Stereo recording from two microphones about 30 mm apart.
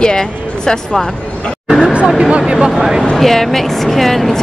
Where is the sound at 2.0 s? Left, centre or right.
Centre.